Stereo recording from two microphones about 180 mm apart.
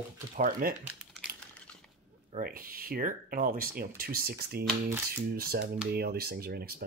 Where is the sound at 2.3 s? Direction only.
50° right (ahead or behind).